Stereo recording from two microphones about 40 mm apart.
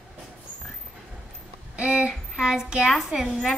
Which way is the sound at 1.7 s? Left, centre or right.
Right.